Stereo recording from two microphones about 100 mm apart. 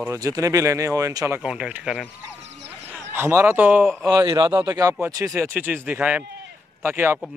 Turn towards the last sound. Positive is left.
turn(degrees=-20)  # may be behind; listen again after turning